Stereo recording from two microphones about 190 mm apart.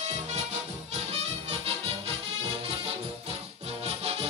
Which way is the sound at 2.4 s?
30° right (ahead or behind).